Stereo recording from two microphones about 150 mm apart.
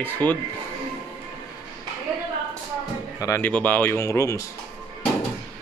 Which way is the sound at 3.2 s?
20° left (ahead or behind).